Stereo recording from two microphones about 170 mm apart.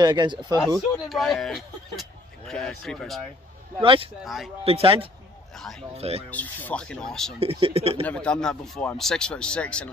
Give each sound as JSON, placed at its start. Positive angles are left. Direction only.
{"t": 0.0, "sound": "speech", "side_deg": -25}
{"t": 0.7, "sound": "speech", "side_deg": 0}
{"t": 3.8, "sound": "speech", "side_deg": -30}
{"t": 4.2, "sound": "speech", "side_deg": 0}
{"t": 4.6, "sound": "speech", "side_deg": -35}
{"t": 5.6, "sound": "speech", "side_deg": 0}
{"t": 5.9, "sound": "speech", "side_deg": -35}
{"t": 6.3, "sound": "speech", "side_deg": 10}
{"t": 7.3, "sound": "speech", "side_deg": -35}
{"t": 8.0, "sound": "speech", "side_deg": 5}